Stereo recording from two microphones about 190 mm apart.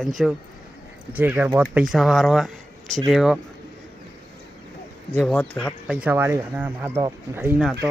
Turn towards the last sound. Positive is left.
turn(degrees=-5)  # may be behind; listen again after turning